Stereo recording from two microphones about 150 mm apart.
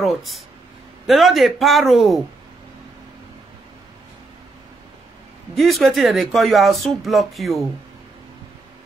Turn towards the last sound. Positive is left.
turn(degrees=0)  # may be behind; listen again after turning